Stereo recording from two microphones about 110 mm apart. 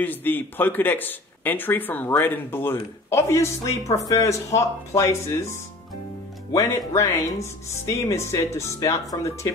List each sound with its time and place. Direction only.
0.0 s speech: 15° left (ahead or behind)